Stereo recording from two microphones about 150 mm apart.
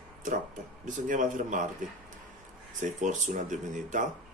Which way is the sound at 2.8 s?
55° right (ahead or behind).